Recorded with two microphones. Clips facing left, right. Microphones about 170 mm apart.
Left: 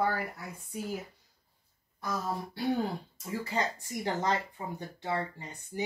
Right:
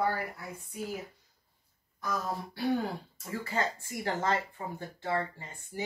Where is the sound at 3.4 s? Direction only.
15° left (ahead or behind).